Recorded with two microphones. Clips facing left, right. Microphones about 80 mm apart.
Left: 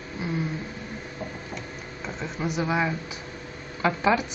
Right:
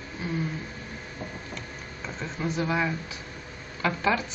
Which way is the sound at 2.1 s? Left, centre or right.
Centre.